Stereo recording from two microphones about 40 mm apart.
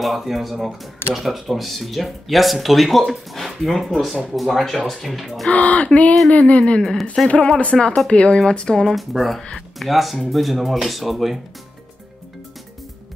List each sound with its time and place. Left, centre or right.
0.0 s speech: centre
5.5 s a sound: left
6.8 s speech: centre
7.2 s speech: left
8.8 s speech: centre